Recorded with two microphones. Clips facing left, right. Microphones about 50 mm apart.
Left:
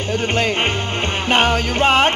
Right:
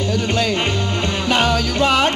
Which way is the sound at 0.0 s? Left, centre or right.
Left.